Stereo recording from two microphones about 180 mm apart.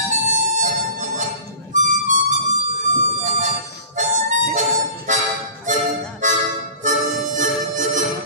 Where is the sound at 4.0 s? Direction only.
45° right (ahead or behind).